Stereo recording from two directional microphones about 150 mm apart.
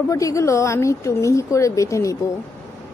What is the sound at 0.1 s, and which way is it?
A woman's voice, 20° left (ahead or behind).